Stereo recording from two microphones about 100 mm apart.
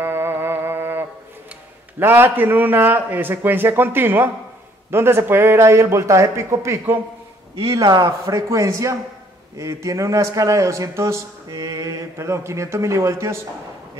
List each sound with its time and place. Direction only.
0.0 s music: 25° right (ahead or behind)
2.0 s a man's voice: 20° right (ahead or behind)
7.7 s a man's voice: 40° right (ahead or behind)